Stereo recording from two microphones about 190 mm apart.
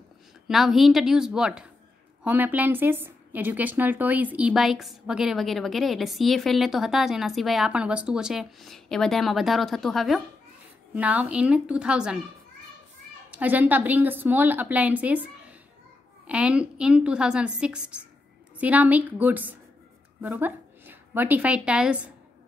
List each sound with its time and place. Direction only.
0.5 s a woman's voice: centre (ahead or behind)
13.3 s a woman's voice: 10° right (ahead or behind)
16.3 s a woman's voice: 5° right (ahead or behind)